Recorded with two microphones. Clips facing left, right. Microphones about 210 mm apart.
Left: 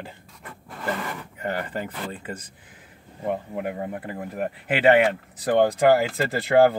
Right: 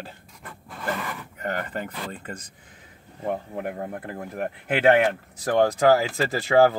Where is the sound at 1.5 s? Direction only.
10° left (ahead or behind).